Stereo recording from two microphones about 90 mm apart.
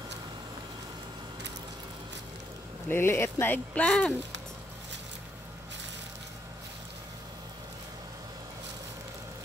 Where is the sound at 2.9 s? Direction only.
25° left (ahead or behind).